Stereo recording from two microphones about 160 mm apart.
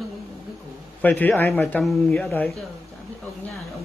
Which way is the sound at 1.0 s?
10° left (ahead or behind).